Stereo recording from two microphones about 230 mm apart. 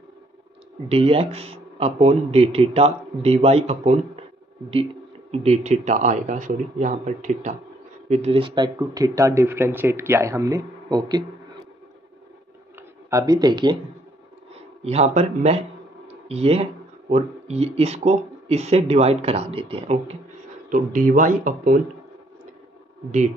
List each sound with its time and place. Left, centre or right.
0.8 s speech: right
5.3 s speech: right
12.7 s speech: centre
14.8 s speech: right
20.7 s speech: right